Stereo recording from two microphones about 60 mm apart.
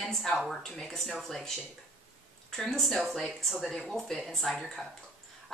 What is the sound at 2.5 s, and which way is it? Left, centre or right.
Speech, centre.